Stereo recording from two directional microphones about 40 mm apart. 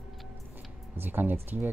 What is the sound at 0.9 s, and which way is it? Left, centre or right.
Speech, right.